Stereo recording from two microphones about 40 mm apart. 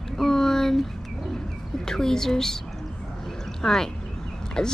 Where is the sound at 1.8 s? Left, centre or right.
Centre.